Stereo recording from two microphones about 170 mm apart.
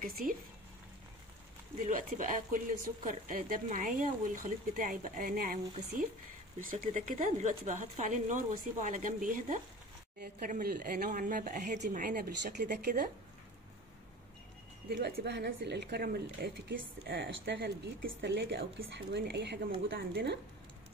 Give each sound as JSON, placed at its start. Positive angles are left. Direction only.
{"t": 0.0, "sound": "speech", "side_deg": -60}
{"t": 1.8, "sound": "speech", "side_deg": -50}
{"t": 12.1, "sound": "speech", "side_deg": -60}
{"t": 14.9, "sound": "a woman's voice", "side_deg": -70}